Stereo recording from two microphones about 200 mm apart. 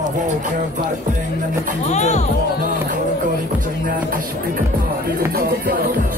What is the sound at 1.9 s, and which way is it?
Speech, 35° left (ahead or behind).